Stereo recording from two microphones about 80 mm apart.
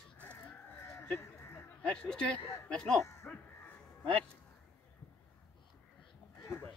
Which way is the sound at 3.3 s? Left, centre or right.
Left.